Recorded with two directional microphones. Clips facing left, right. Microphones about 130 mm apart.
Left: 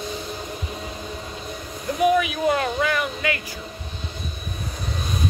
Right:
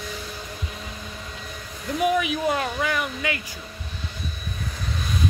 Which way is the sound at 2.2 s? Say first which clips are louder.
Left 2 dB; 15° right (ahead or behind).